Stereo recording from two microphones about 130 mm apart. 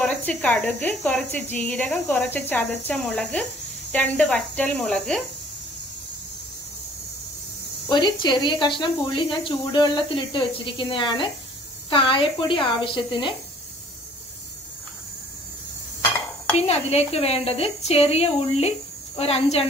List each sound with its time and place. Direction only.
0.0 s a woman's voice: 5° left (ahead or behind)
7.9 s speech: 35° left (ahead or behind)
16.5 s a woman's voice: 55° left (ahead or behind)